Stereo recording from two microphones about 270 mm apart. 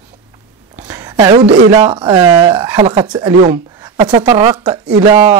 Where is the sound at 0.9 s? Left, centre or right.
Centre.